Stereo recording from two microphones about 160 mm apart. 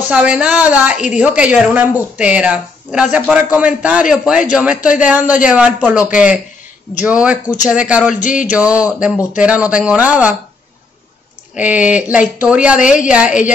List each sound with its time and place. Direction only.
0.1 s a woman's voice: 5° right (ahead or behind)
8.1 s a sound: 55° left (ahead or behind)
8.5 s a woman's voice: 10° right (ahead or behind)
11.5 s a woman's voice: 10° right (ahead or behind)